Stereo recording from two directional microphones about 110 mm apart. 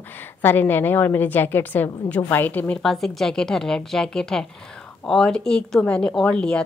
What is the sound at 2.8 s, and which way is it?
A woman's voice, 5° left (ahead or behind).